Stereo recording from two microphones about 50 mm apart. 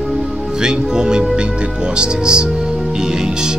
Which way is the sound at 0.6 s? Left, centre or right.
Centre.